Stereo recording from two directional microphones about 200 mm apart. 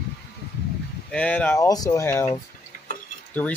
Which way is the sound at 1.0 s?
5° left (ahead or behind).